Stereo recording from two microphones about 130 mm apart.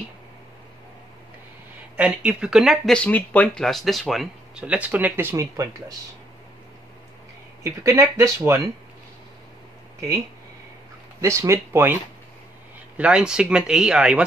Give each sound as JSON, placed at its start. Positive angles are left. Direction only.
{"t": 2.0, "sound": "speech", "side_deg": -5}
{"t": 7.6, "sound": "speech", "side_deg": -25}
{"t": 11.1, "sound": "speech", "side_deg": -20}
{"t": 12.9, "sound": "speech", "side_deg": -10}